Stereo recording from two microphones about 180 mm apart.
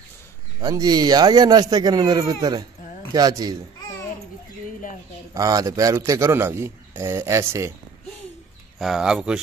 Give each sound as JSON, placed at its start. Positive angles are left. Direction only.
{"t": 0.6, "sound": "speech", "side_deg": -25}
{"t": 5.3, "sound": "a man's voice", "side_deg": -20}
{"t": 8.7, "sound": "speech", "side_deg": 0}